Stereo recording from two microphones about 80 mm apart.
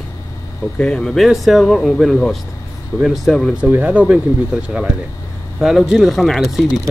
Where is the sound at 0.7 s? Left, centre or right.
Centre.